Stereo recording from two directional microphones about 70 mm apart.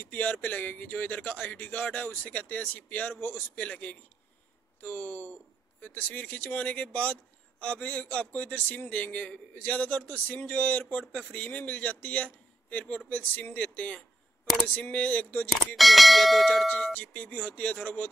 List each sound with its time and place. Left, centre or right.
0.0 s a man's voice: left
15.5 s speech: centre
16.6 s a man's voice: centre